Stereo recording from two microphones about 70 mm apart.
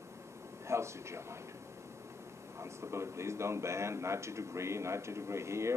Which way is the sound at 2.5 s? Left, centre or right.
Right.